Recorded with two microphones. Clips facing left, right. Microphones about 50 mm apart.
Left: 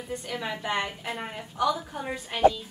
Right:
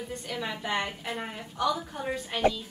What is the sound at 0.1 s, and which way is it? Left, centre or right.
A woman's voice, centre.